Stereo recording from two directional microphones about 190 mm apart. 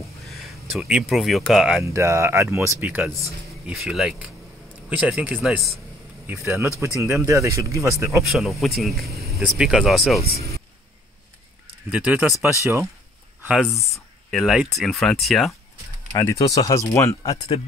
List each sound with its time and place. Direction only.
0.3 s speech: centre (ahead or behind)
1.9 s speech: 15° right (ahead or behind)
6.2 s speech: 10° right (ahead or behind)
8.3 s speech: centre (ahead or behind)
11.9 s speech: 5° right (ahead or behind)
13.9 s speech: centre (ahead or behind)
16.1 s speech: 20° left (ahead or behind)